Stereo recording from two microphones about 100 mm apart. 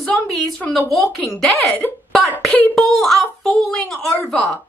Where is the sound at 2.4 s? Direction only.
10° left (ahead or behind).